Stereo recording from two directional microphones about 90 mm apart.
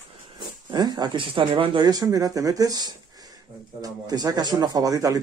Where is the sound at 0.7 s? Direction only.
50° right (ahead or behind); by 1.8 s 70° right (ahead or behind).